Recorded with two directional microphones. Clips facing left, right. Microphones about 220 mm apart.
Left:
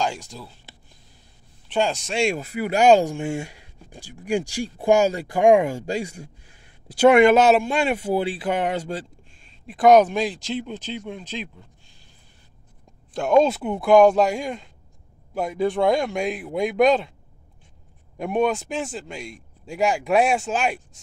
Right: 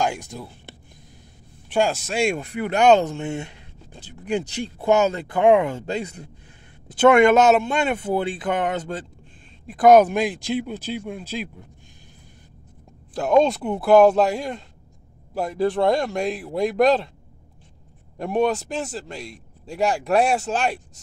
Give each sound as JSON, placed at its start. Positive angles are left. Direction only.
{"t": 0.0, "sound": "speech", "side_deg": -55}
{"t": 0.7, "sound": "a sound", "side_deg": -55}
{"t": 1.7, "sound": "speech", "side_deg": -5}
{"t": 13.1, "sound": "a man's voice", "side_deg": 0}
{"t": 18.1, "sound": "a man's voice", "side_deg": 0}